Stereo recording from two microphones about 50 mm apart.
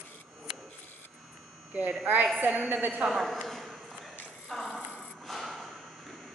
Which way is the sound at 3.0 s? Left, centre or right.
Centre.